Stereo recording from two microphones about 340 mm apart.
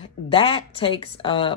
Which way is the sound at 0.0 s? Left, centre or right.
Centre.